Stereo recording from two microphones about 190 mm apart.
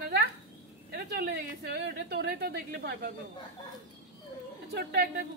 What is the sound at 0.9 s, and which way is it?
A woman's voice, 60° right (ahead or behind).